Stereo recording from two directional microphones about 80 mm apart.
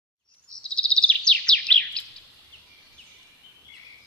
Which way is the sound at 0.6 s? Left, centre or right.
Centre.